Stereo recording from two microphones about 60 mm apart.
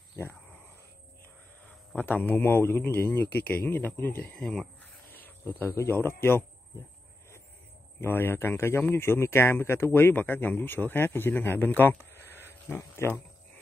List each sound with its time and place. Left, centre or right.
0.1 s speech: left
2.0 s speech: left; by 4.6 s centre
5.1 s cricket: left
5.7 s speech: left
8.0 s speech: left
12.0 s a sound: left